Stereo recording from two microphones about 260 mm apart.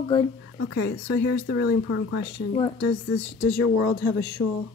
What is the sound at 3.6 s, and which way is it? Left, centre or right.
Speech, left.